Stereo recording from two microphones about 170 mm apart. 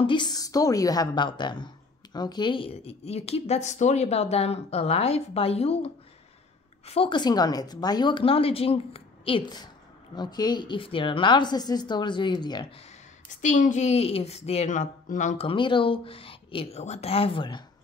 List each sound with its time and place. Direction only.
0.0 s a woman's voice: 25° left (ahead or behind)
6.9 s a woman's voice: 30° left (ahead or behind)
13.4 s a woman's voice: 45° left (ahead or behind)
15.4 s a woman's voice: 30° left (ahead or behind)